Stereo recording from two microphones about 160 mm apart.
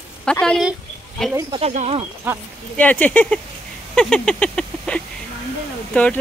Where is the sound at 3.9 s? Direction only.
5° left (ahead or behind).